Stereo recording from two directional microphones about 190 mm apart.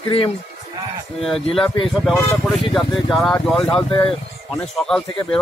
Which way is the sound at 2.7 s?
Centre (ahead or behind).